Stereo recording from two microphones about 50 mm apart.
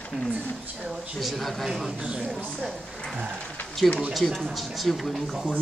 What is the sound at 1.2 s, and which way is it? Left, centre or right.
Speech, centre.